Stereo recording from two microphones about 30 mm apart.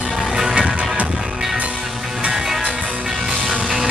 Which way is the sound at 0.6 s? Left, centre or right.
Right.